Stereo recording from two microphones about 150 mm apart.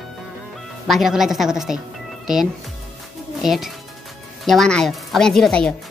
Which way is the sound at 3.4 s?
Centre (ahead or behind).